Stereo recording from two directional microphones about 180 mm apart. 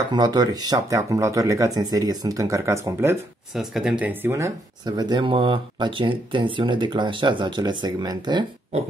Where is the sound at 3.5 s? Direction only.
Centre (ahead or behind); by 8.5 s 25° right (ahead or behind).